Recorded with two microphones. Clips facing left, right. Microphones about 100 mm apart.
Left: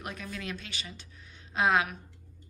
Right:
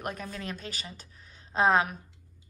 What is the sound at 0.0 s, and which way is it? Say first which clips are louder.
A woman's voice: right 3 dB; 40° right (ahead or behind).